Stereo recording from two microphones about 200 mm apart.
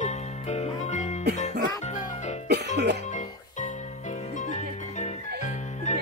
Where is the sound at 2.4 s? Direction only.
55° right (ahead or behind).